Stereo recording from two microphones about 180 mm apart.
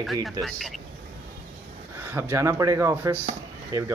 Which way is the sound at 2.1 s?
15° right (ahead or behind).